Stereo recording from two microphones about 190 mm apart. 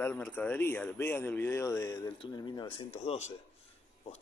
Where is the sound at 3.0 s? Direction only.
35° left (ahead or behind).